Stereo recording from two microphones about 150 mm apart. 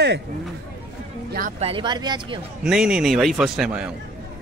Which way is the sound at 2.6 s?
5° right (ahead or behind).